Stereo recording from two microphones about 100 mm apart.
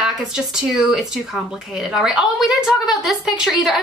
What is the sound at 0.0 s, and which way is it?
A woman's voice, 10° right (ahead or behind).